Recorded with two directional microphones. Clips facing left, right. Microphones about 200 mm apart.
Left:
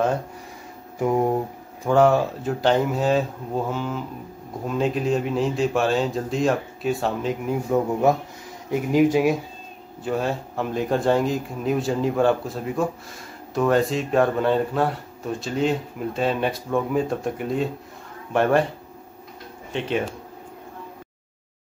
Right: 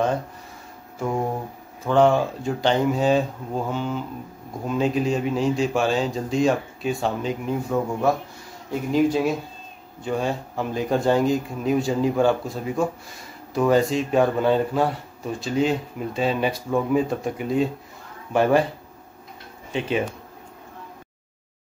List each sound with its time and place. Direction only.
0.9 s speech: 20° left (ahead or behind)
1.9 s speech: 5° left (ahead or behind)
7.7 s speech: 20° left (ahead or behind)
10.0 s speech: centre (ahead or behind)
19.7 s speech: centre (ahead or behind)